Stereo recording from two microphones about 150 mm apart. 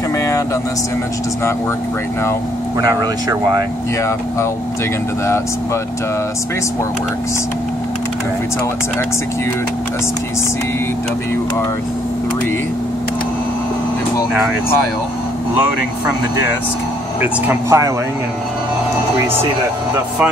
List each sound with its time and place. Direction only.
17.2 s speech: 15° right (ahead or behind)